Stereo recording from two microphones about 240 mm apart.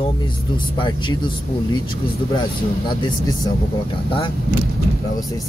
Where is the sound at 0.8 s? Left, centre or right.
Centre.